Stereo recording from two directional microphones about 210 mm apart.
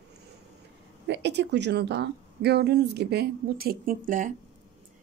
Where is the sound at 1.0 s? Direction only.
55° right (ahead or behind).